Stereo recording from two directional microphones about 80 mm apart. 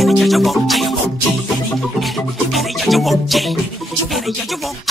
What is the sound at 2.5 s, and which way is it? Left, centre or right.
Music, centre.